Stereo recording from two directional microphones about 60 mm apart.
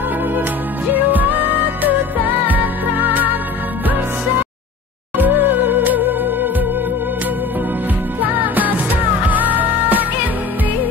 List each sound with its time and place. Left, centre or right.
0.9 s music: right
5.1 s music: right
8.2 s music: right